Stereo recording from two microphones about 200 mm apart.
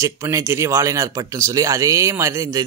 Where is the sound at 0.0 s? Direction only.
15° right (ahead or behind).